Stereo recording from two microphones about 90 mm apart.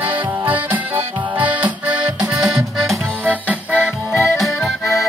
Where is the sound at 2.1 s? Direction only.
50° right (ahead or behind).